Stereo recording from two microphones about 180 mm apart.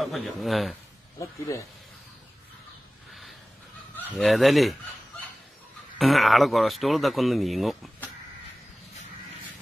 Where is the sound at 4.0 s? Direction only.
5° left (ahead or behind).